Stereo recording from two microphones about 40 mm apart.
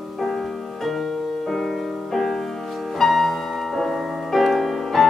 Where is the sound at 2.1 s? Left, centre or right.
Centre.